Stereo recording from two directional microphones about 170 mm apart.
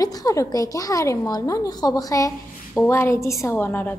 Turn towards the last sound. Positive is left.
turn(degrees=15)  # may be behind; listen again after turning